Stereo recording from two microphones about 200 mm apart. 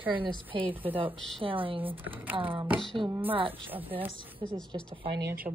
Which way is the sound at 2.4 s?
25° right (ahead or behind).